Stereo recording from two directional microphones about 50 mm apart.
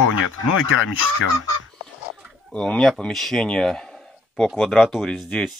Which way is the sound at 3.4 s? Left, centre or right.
Centre.